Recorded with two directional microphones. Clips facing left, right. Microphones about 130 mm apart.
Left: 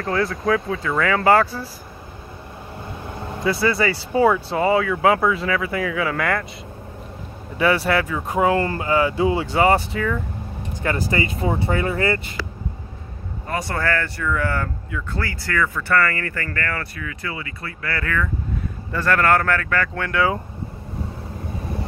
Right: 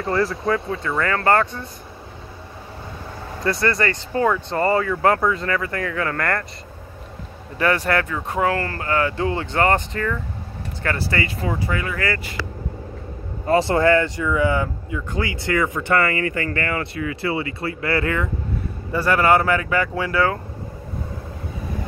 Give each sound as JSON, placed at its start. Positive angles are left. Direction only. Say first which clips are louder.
{"t": 0.0, "sound": "speech", "louder": "right 1 dB", "side_deg": 0}
{"t": 3.3, "sound": "speech", "louder": "left 1 dB", "side_deg": 5}
{"t": 7.5, "sound": "speech", "louder": "left 1 dB", "side_deg": 5}
{"t": 10.8, "sound": "speech", "louder": "left 2 dB", "side_deg": 20}
{"t": 13.5, "sound": "speech", "louder": "right 8 dB", "side_deg": -25}
{"t": 18.9, "sound": "speech", "louder": "right 1 dB", "side_deg": -10}